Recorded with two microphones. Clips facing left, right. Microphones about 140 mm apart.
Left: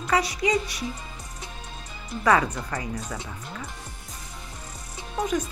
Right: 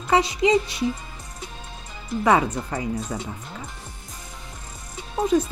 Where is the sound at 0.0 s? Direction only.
25° right (ahead or behind).